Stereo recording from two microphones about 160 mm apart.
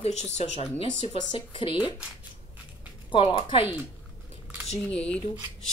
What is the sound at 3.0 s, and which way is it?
Speech, 30° left (ahead or behind).